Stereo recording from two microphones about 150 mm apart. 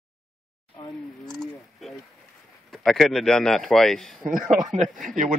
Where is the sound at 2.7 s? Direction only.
Centre (ahead or behind).